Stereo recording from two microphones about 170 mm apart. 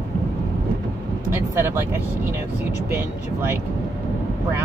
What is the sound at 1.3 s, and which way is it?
Speech, 15° right (ahead or behind).